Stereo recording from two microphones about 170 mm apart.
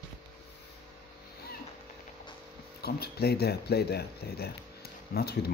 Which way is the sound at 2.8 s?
70° left (ahead or behind).